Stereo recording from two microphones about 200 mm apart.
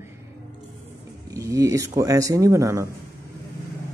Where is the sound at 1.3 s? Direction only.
15° right (ahead or behind).